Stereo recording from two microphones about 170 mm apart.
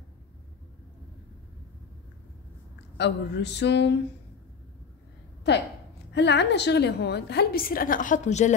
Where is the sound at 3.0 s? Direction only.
90° left.